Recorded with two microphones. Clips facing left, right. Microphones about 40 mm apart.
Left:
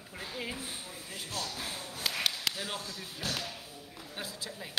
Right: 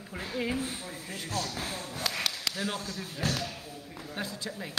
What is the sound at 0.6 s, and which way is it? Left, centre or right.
Speech, right.